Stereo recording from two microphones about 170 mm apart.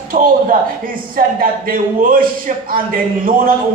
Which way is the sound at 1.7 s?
55° right (ahead or behind).